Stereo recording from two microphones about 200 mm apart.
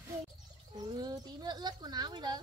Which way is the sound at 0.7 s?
20° right (ahead or behind).